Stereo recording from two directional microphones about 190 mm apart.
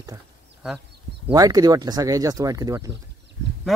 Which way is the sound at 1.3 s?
20° right (ahead or behind).